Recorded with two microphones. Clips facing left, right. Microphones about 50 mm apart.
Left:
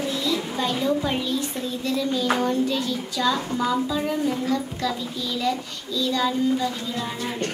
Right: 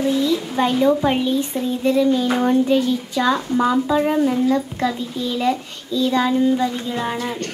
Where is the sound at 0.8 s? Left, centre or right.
Right.